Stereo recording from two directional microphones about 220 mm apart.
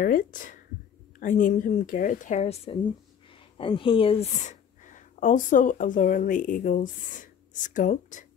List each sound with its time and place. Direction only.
0.0 s speech: 40° left (ahead or behind)